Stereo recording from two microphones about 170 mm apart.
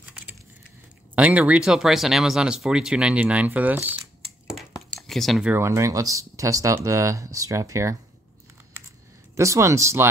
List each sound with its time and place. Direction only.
1.1 s speech: 10° right (ahead or behind)
5.0 s speech: centre (ahead or behind)
5.5 s speech: 15° right (ahead or behind)
9.3 s speech: 15° right (ahead or behind)